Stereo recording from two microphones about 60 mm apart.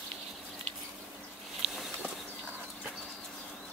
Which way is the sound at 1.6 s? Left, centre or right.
Centre.